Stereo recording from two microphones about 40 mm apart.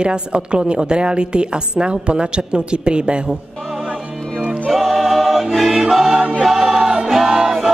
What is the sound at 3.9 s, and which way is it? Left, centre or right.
Music, right.